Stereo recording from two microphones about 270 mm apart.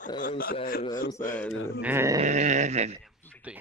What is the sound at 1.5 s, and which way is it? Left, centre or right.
Speech, left.